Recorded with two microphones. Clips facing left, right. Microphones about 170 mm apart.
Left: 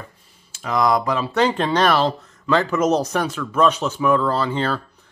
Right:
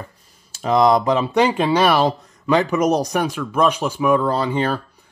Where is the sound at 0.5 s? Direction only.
25° right (ahead or behind).